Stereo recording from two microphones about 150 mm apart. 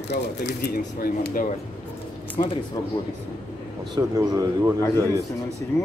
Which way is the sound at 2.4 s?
45° left (ahead or behind).